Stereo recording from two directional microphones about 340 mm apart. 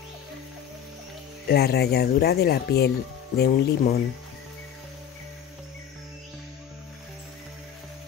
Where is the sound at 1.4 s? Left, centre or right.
Left.